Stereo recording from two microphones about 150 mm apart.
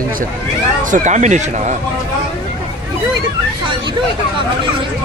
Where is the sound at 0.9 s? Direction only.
55° right (ahead or behind).